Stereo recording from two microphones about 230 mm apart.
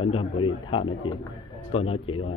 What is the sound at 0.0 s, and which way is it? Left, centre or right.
A man's voice, left.